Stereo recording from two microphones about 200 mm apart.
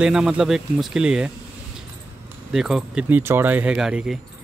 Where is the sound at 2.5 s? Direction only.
Centre (ahead or behind).